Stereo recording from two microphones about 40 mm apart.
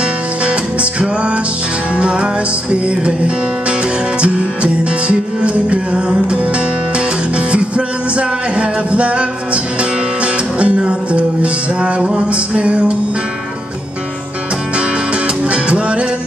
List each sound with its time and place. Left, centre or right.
0.0 s music: right
14.8 s music: right